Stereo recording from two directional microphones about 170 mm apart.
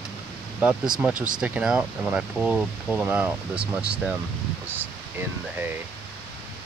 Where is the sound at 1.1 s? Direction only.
50° right (ahead or behind).